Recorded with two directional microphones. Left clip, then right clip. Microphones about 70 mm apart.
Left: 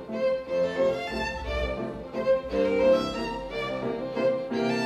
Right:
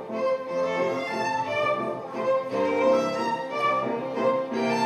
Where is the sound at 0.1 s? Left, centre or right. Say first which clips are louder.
Even; left.